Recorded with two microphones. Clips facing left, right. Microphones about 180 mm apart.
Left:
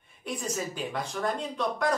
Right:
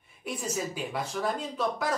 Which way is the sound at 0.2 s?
5° right (ahead or behind).